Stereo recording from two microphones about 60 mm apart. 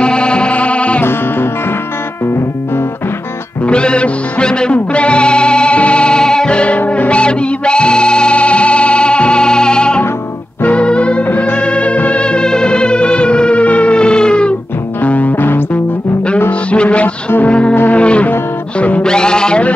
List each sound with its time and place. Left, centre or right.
0.0 s music: centre
3.6 s music: centre
11.2 s music: left
15.0 s music: left
16.7 s music: centre